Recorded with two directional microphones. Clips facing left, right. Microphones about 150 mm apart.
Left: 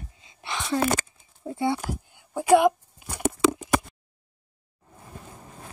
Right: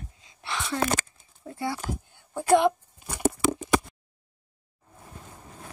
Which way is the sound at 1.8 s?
10° left (ahead or behind).